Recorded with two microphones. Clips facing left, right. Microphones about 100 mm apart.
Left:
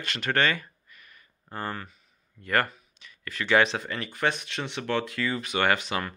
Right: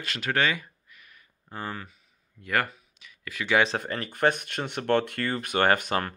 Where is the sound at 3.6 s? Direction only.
40° right (ahead or behind).